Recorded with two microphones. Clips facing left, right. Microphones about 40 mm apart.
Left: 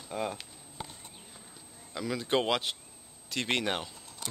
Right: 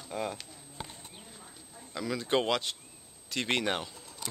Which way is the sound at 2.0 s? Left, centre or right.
Centre.